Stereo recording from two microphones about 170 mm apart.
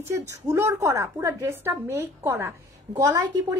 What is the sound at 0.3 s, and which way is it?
A woman's voice, 15° right (ahead or behind).